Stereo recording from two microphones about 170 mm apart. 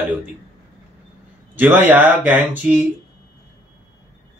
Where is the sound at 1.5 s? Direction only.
10° right (ahead or behind).